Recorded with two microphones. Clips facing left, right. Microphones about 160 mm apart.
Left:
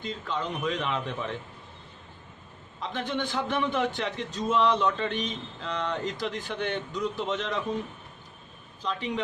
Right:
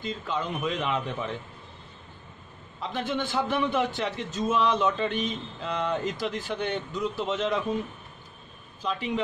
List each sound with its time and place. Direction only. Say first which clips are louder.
0.0 s a man's voice: right 1 dB; 5° right (ahead or behind)
2.9 s a man's voice: right 1 dB; 5° right (ahead or behind)
8.8 s a man's voice: right 2 dB; 5° right (ahead or behind)